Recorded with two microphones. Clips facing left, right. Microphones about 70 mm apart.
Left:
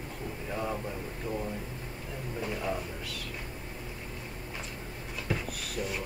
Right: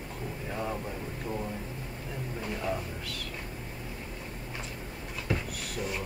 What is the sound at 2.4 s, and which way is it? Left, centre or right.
Speech, centre.